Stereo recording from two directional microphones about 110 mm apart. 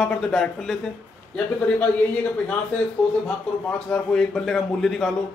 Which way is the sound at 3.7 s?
10° left (ahead or behind).